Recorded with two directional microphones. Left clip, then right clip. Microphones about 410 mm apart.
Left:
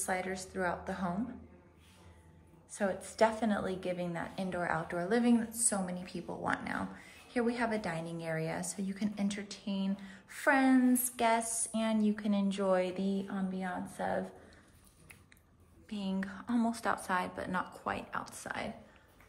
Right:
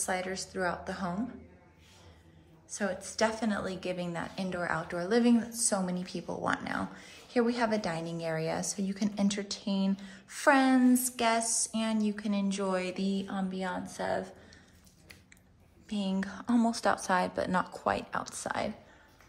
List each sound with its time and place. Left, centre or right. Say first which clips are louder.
0.0 s a woman's voice: right 2 dB; centre
2.7 s a woman's voice: right 1 dB; centre
15.9 s a woman's voice: right 4 dB; centre